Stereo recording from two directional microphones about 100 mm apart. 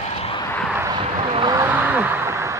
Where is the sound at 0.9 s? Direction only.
50° right (ahead or behind).